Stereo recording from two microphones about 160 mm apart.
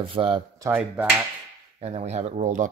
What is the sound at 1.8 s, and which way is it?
Speech, 40° right (ahead or behind).